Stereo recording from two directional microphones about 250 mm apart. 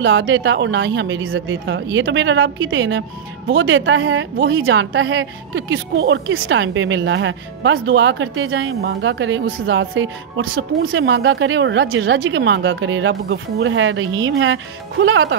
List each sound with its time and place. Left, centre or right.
0.0 s speech: right